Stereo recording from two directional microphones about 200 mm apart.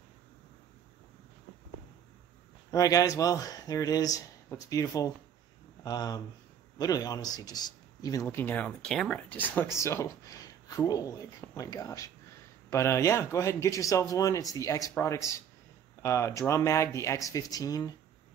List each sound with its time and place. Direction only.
2.7 s speech: 15° left (ahead or behind)